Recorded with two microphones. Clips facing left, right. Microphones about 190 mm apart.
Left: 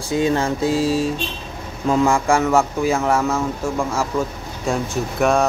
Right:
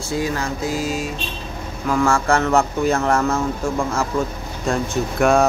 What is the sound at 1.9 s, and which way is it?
Speech, 20° left (ahead or behind).